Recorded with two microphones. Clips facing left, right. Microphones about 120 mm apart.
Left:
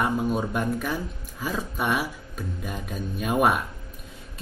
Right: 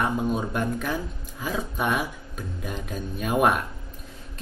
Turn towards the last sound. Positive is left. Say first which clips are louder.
# even
turn(degrees=0)  # may be behind; listen again after turning